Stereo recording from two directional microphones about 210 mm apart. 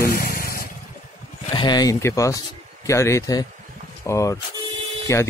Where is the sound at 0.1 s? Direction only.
45° left (ahead or behind).